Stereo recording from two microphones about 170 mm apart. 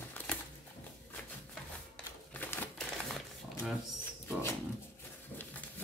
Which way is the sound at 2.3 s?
10° left (ahead or behind).